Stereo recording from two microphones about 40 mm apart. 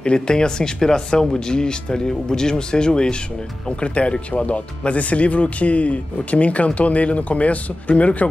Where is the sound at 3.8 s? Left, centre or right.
Left.